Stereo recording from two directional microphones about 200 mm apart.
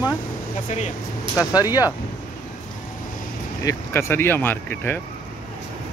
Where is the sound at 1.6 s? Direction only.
20° left (ahead or behind).